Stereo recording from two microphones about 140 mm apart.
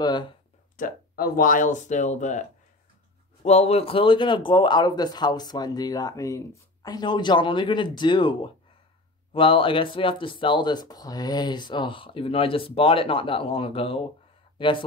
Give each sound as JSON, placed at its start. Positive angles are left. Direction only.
{"t": 0.0, "sound": "speech", "side_deg": 30}
{"t": 0.7, "sound": "speech", "side_deg": 85}
{"t": 3.4, "sound": "speech", "side_deg": 50}